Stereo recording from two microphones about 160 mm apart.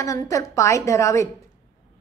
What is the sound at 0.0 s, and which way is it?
A woman's voice, 20° left (ahead or behind).